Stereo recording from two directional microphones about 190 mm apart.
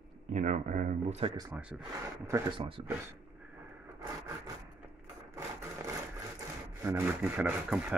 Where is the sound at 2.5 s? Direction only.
25° right (ahead or behind).